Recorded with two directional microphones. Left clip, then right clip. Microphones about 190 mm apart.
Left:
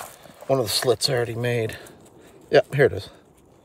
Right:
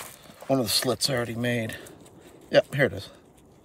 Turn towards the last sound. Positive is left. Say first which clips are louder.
# left 4 dB
turn(degrees=50)  # may be behind; listen again after turning